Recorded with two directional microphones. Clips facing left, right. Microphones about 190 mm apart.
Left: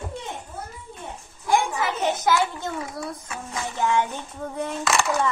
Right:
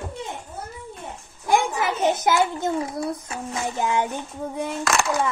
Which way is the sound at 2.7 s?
35° right (ahead or behind).